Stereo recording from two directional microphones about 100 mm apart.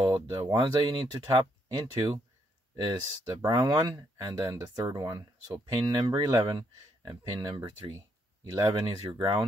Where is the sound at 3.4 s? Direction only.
45° right (ahead or behind).